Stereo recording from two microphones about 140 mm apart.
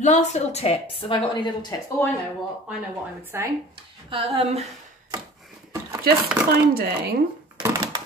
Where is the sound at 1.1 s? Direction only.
35° left (ahead or behind).